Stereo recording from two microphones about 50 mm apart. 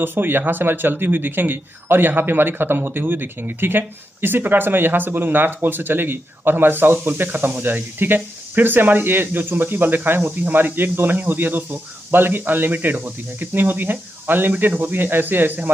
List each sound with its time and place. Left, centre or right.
0.0 s speech: right